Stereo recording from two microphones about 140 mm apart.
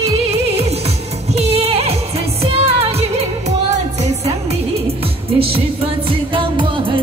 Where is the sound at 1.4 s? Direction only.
45° right (ahead or behind).